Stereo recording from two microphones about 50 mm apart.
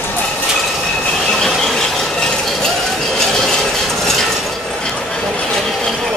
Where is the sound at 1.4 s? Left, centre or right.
Centre.